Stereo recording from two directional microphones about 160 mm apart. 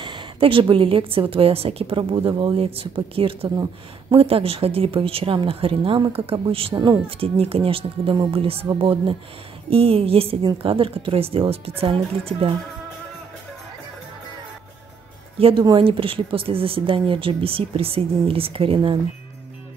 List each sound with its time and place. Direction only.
0.0 s speech: 30° right (ahead or behind)
15.3 s speech: 35° right (ahead or behind)